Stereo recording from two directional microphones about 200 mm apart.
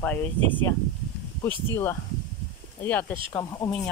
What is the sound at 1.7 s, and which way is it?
Speech, 10° left (ahead or behind).